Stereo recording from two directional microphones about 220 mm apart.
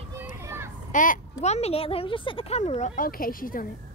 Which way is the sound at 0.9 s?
35° left (ahead or behind).